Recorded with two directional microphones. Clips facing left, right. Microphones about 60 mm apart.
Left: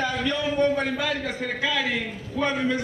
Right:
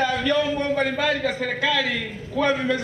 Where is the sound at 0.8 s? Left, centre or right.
Right.